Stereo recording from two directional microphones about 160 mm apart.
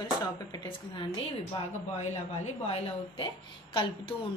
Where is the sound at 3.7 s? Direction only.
30° left (ahead or behind).